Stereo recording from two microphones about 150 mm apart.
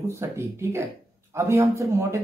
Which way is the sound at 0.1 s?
15° right (ahead or behind).